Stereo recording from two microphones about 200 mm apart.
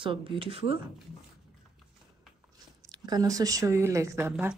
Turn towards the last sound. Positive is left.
turn(degrees=-10)  # may be behind; listen again after turning